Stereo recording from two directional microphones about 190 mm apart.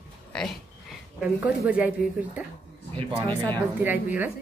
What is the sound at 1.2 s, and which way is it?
Speech, 5° right (ahead or behind).